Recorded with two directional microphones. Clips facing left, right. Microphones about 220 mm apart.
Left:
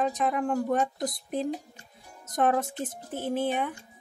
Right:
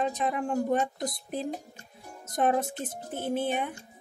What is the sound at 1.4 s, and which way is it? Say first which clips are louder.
Speech: left 3 dB; 45° right (ahead or behind).